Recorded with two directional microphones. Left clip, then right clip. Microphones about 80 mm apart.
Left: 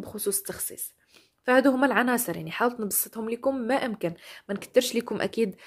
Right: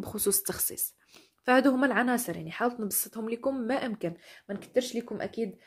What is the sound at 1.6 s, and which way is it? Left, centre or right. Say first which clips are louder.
Speech: left 3 dB; left.